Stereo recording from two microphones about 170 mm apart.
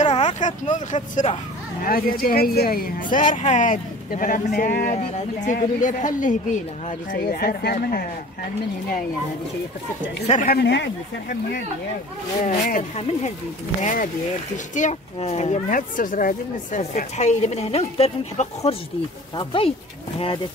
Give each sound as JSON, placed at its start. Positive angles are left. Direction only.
{"t": 0.0, "sound": "speech", "side_deg": 45}
{"t": 1.8, "sound": "speech", "side_deg": 60}
{"t": 3.3, "sound": "speech", "side_deg": 45}
{"t": 4.9, "sound": "speech", "side_deg": 45}
{"t": 7.1, "sound": "speech", "side_deg": 60}
{"t": 10.2, "sound": "speech", "side_deg": 40}
{"t": 10.5, "sound": "speech", "side_deg": 85}
{"t": 12.4, "sound": "speech", "side_deg": 50}